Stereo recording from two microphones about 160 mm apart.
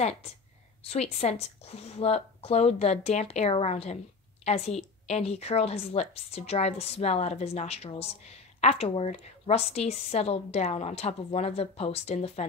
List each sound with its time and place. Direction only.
0.8 s a woman's voice: 40° left (ahead or behind)